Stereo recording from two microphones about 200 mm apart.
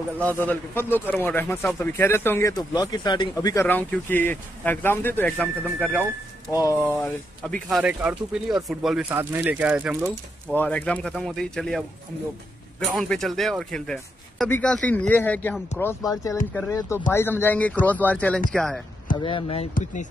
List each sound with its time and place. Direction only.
0.2 s speech: 10° left (ahead or behind)
6.5 s speech: 15° left (ahead or behind)
7.0 s speech: 5° left (ahead or behind)
10.5 s speech: 10° left (ahead or behind)
12.9 s speech: centre (ahead or behind)
19.1 s speech: 25° left (ahead or behind)
19.7 s speech: 40° left (ahead or behind)